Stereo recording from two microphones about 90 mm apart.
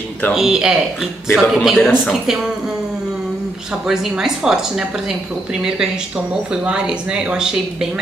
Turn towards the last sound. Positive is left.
turn(degrees=-10)  # may be behind; listen again after turning